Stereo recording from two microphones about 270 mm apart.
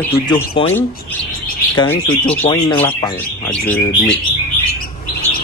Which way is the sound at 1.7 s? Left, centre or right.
Centre.